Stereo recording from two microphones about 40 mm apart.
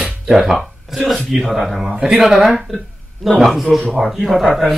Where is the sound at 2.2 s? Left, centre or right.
Centre.